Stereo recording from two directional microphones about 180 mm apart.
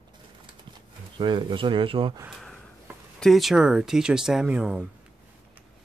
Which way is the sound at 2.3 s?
Centre (ahead or behind).